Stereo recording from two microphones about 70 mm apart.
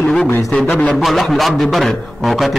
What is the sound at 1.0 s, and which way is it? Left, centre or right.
A man's voice, centre.